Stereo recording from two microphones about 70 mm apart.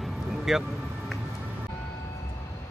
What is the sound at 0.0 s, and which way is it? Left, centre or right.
Music, centre.